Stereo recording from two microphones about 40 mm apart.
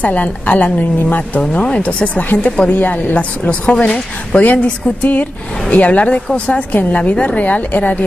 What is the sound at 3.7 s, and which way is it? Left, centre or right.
Speech, left.